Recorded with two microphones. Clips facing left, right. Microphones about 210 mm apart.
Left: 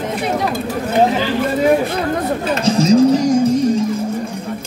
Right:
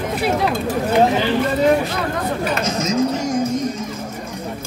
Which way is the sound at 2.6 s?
30° left (ahead or behind).